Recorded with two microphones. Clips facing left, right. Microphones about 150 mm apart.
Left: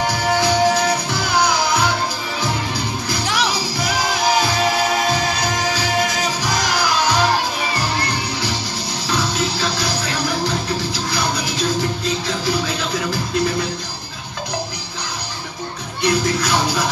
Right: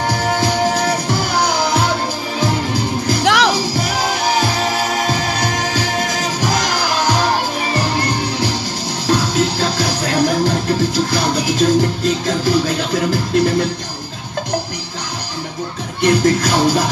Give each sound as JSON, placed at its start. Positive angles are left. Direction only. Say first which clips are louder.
{"t": 0.0, "sound": "music", "louder": "right 1 dB", "side_deg": -45}
{"t": 3.3, "sound": "music", "louder": "right 8 dB", "side_deg": -90}
{"t": 5.4, "sound": "music", "louder": "right 2 dB", "side_deg": -45}
{"t": 9.0, "sound": "music", "louder": "right 6 dB", "side_deg": -45}
{"t": 16.0, "sound": "music", "louder": "right 5 dB", "side_deg": -50}